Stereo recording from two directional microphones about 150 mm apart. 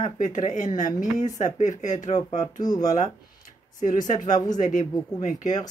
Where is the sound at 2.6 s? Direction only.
25° left (ahead or behind).